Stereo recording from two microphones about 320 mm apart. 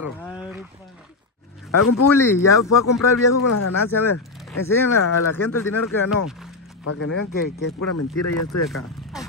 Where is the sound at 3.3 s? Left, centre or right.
Left.